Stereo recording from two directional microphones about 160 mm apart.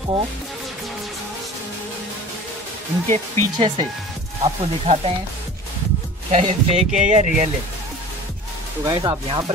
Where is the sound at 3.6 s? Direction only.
35° right (ahead or behind).